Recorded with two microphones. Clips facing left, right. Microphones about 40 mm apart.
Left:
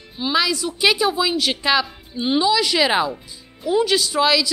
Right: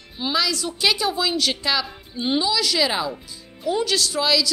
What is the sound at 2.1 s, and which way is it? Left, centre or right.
A woman's voice, centre.